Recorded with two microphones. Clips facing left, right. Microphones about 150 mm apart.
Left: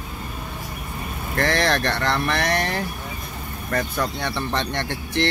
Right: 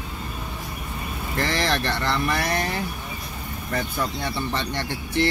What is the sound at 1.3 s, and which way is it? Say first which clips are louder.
Speech: left 3 dB; 60° left (ahead or behind).